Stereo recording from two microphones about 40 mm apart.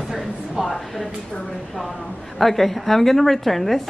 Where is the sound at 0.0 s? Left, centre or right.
Centre.